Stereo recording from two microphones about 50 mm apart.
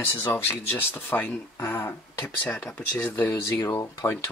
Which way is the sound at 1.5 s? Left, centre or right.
Left.